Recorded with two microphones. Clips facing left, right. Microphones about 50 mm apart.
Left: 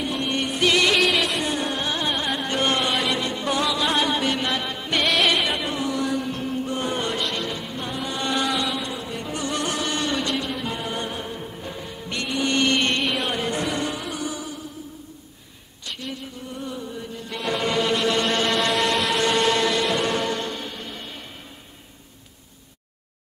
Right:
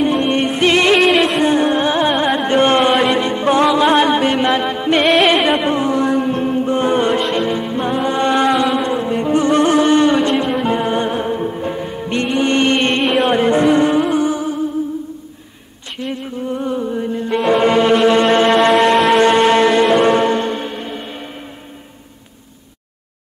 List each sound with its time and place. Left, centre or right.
0.0 s music: right
1.4 s carnatic music: right
3.0 s music: right
13.0 s music: right
13.3 s music: right
16.0 s music: right